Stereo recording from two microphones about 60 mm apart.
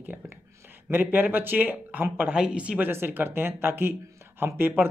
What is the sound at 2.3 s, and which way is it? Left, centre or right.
Speech, centre.